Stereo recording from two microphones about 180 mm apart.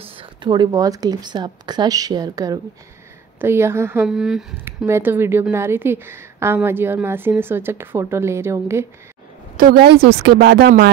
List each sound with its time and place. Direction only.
0.0 s a woman's voice: 30° right (ahead or behind); by 4.6 s centre (ahead or behind)
4.6 s speech: 15° right (ahead or behind)
9.6 s speech: 60° right (ahead or behind)